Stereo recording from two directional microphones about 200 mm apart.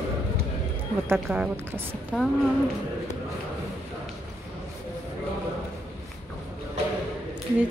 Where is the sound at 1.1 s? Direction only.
5° right (ahead or behind).